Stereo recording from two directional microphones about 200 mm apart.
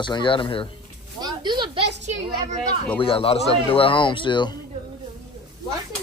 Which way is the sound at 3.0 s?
30° left (ahead or behind).